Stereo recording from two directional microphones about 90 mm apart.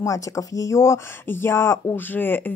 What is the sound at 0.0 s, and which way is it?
Speech, 40° left (ahead or behind).